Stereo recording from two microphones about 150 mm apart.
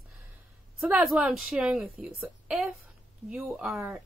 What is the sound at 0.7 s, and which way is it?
A woman's voice, 5° right (ahead or behind).